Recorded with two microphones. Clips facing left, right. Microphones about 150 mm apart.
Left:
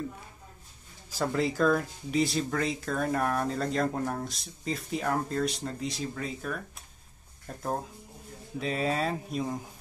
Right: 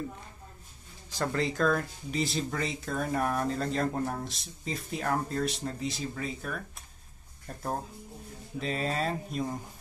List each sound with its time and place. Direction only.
1.1 s speech: 5° left (ahead or behind)
8.5 s speech: centre (ahead or behind)